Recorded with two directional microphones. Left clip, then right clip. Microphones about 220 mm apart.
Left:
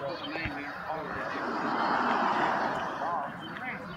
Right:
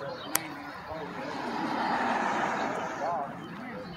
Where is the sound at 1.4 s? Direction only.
40° right (ahead or behind); by 2.6 s 25° right (ahead or behind).